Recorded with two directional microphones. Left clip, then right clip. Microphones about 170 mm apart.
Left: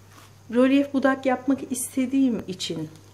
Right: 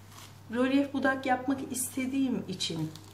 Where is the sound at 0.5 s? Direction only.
50° left (ahead or behind).